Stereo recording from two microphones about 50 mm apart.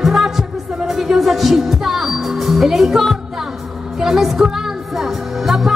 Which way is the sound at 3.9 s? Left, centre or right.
Centre.